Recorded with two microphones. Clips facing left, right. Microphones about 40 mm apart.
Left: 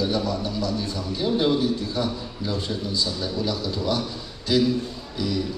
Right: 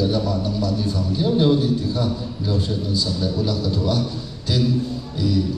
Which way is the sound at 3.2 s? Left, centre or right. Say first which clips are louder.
Right 4 dB; left.